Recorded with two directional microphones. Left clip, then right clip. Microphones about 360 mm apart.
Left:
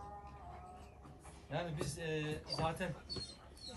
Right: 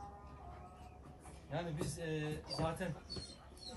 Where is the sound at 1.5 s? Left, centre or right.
Centre.